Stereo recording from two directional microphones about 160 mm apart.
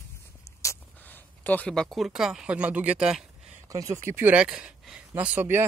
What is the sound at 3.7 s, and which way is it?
Speech, 20° right (ahead or behind).